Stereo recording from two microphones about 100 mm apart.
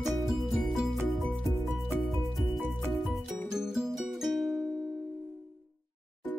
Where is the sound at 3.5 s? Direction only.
5° right (ahead or behind).